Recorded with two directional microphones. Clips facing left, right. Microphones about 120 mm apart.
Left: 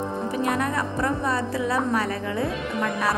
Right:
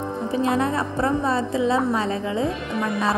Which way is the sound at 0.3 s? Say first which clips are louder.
Right 4 dB; 25° right (ahead or behind).